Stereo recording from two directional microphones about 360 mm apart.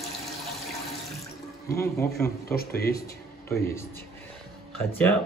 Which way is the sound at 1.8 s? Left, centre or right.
Centre.